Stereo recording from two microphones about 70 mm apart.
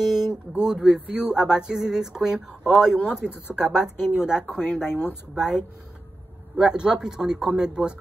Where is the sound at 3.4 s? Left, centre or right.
Left.